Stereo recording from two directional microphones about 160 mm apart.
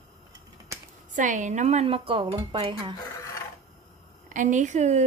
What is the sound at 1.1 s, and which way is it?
A woman's voice, 50° right (ahead or behind).